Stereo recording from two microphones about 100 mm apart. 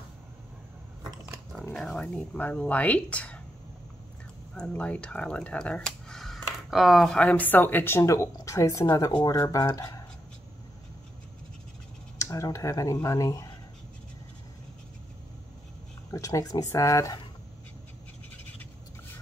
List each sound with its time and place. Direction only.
1.6 s speech: 5° left (ahead or behind)
4.6 s speech: 15° left (ahead or behind); by 10.0 s 35° left (ahead or behind)
12.2 s speech: 30° left (ahead or behind)
16.1 s speech: 35° left (ahead or behind)